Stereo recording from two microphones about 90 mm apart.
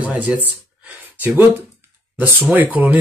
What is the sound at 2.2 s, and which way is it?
Speech, 20° right (ahead or behind).